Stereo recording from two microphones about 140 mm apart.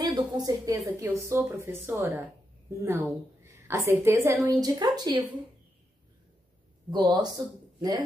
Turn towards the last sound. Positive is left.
turn(degrees=-30)  # may be behind; listen again after turning